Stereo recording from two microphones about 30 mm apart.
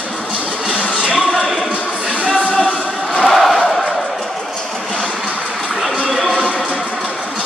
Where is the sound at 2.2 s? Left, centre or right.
Left.